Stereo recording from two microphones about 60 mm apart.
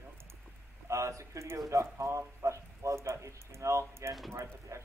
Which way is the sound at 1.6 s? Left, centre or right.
Right.